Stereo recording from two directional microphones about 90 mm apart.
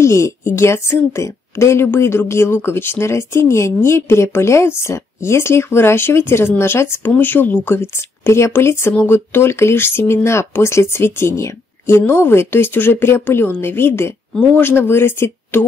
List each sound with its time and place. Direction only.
0.0 s a woman's voice: 30° left (ahead or behind)